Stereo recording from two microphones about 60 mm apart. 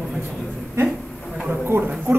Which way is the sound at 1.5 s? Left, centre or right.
Right.